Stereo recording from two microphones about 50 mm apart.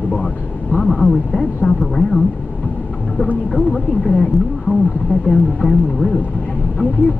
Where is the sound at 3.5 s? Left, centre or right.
Centre.